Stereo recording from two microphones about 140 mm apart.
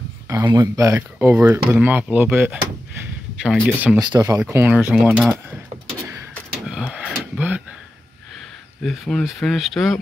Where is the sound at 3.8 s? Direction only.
5° right (ahead or behind).